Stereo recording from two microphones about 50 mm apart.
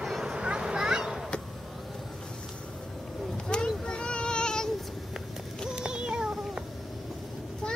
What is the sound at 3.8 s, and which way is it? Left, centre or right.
Child singing, centre.